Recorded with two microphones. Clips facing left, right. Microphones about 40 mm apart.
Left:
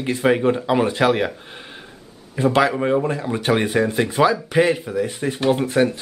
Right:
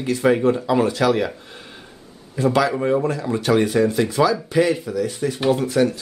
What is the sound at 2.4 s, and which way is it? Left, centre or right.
Speech, left.